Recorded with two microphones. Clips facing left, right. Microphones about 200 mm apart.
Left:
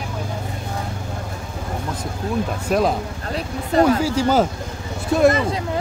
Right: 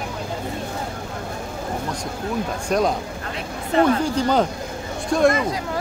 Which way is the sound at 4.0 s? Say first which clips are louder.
Left 2 dB; 5° left (ahead or behind).